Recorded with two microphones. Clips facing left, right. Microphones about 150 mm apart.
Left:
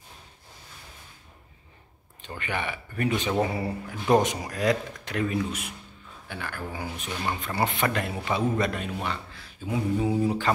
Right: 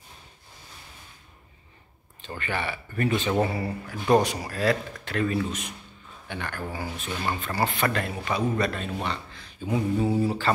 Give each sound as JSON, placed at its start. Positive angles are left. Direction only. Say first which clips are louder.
{"t": 2.2, "sound": "a man's voice", "louder": "right 1 dB", "side_deg": 15}
{"t": 3.4, "sound": "a man's voice", "louder": "even", "side_deg": 20}